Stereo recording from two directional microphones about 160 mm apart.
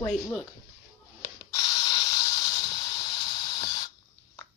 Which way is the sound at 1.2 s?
25° left (ahead or behind).